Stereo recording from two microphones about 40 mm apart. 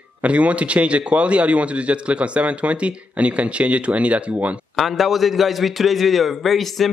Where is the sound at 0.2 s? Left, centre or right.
Right.